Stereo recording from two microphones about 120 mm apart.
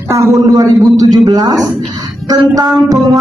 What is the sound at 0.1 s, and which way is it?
Speech, 30° right (ahead or behind).